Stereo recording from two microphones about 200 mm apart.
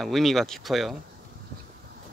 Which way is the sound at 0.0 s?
Centre (ahead or behind).